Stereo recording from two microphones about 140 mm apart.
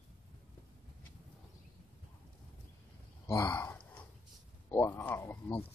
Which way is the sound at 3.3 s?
15° left (ahead or behind).